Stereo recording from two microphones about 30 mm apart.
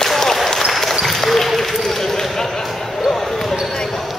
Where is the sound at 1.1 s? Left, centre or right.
Centre.